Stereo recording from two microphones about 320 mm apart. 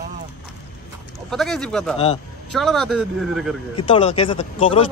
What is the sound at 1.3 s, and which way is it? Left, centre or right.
Speech, centre.